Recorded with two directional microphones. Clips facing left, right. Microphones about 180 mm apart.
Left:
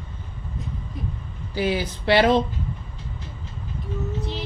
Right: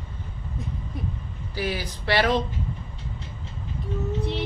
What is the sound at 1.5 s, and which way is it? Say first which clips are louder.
Speech: left 5 dB; 25° left (ahead or behind).